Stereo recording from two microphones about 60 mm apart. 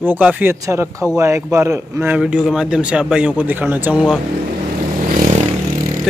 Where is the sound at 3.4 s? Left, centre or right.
Right.